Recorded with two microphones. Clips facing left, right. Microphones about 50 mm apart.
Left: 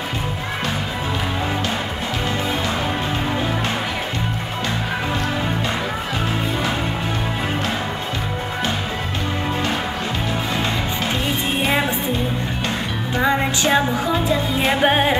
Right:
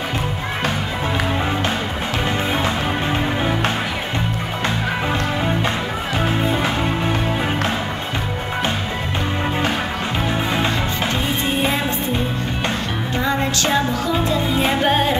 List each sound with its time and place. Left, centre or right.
13.2 s music: centre